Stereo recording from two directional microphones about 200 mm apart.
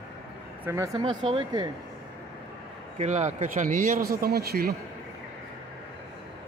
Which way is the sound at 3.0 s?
35° right (ahead or behind).